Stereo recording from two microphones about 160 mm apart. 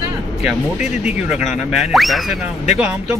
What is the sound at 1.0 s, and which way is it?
Speech, 5° right (ahead or behind).